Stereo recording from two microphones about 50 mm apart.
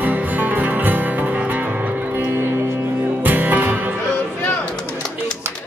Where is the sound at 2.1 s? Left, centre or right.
Right.